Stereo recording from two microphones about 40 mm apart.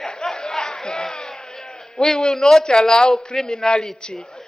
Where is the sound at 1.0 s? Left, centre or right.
Centre.